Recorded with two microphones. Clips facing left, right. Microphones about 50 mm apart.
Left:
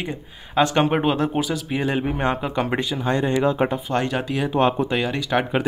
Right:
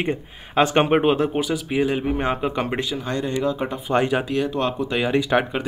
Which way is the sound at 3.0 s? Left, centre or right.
Left.